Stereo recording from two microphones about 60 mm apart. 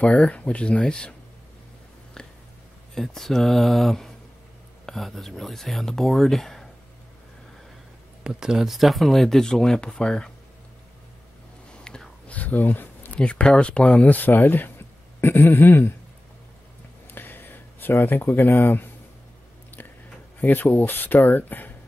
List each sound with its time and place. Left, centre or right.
0.0 s speech: left
2.2 s a sound: centre
2.9 s speech: centre
8.2 s speech: centre
11.8 s whispering: centre
12.4 s speech: left
13.2 s speech: centre; by 15.9 s left
17.1 s a sound: left
18.0 s speech: left
20.3 s speech: left